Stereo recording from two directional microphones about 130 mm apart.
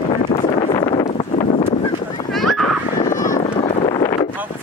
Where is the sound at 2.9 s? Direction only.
80° left.